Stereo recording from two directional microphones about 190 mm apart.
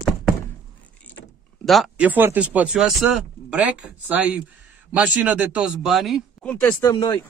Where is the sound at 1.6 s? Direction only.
Centre (ahead or behind).